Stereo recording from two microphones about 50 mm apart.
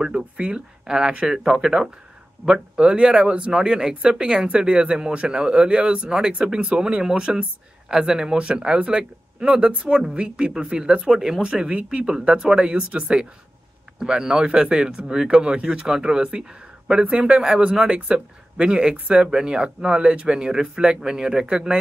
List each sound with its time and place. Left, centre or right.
0.0 s speech: right
13.9 s speech: centre